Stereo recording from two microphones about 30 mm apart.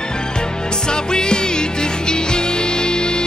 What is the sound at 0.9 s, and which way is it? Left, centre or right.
Music, left.